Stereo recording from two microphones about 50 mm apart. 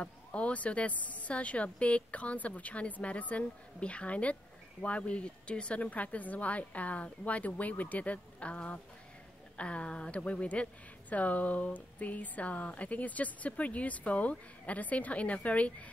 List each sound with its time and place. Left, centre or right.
0.0 s speech: left